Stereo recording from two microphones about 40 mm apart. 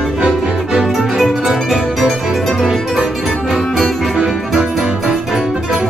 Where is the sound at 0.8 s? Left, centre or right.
Centre.